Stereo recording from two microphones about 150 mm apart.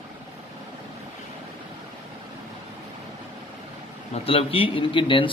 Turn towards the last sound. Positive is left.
turn(degrees=35)  # may be behind; listen again after turning